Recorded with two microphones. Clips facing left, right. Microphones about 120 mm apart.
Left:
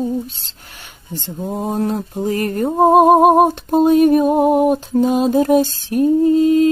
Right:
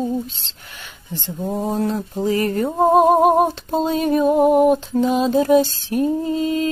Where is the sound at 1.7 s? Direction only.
50° left (ahead or behind).